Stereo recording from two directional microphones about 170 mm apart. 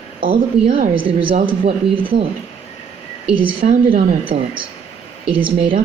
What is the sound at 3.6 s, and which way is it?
Speech, 60° right (ahead or behind).